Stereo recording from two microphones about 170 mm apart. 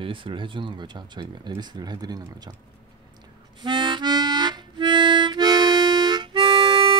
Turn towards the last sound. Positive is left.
turn(degrees=-25)  # may be behind; listen again after turning